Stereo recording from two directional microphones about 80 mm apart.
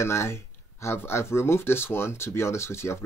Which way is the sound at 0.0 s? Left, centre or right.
Left.